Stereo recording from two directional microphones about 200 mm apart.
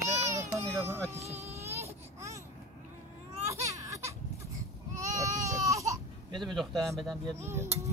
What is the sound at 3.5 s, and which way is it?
Baby cry, 15° right (ahead or behind).